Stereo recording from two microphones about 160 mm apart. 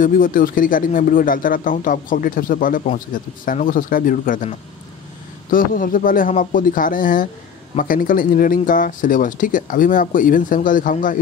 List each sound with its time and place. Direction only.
0.0 s speech: 60° left (ahead or behind)